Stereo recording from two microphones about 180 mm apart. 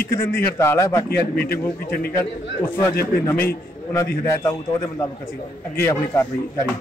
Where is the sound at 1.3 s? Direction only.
60° left (ahead or behind).